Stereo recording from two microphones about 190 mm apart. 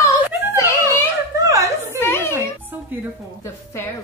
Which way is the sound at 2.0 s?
10° left (ahead or behind).